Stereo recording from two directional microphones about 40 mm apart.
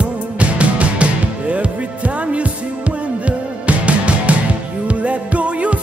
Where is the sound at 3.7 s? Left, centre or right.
Right.